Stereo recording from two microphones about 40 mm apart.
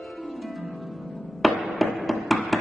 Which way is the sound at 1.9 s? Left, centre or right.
Centre.